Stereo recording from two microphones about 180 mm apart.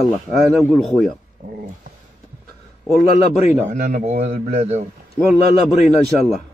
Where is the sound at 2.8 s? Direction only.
5° right (ahead or behind).